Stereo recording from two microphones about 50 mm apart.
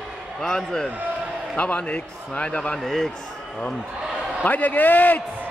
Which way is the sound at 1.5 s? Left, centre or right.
Left.